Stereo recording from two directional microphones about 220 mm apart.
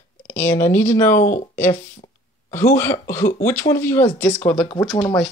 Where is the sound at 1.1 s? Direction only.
35° left (ahead or behind).